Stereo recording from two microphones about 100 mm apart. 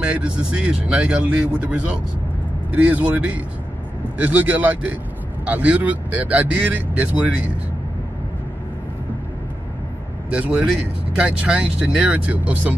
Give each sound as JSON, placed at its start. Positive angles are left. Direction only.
{"t": 0.0, "sound": "speech", "side_deg": -10}
{"t": 10.3, "sound": "speech", "side_deg": -10}